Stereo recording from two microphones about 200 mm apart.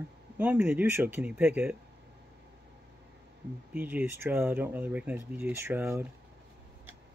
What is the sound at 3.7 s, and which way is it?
Speech, 10° right (ahead or behind).